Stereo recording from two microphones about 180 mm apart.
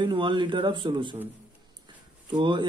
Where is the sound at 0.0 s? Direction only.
25° right (ahead or behind).